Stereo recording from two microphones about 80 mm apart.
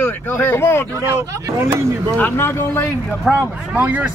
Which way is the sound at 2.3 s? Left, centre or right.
Left.